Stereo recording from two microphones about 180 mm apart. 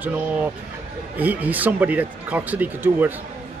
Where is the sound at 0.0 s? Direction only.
10° right (ahead or behind).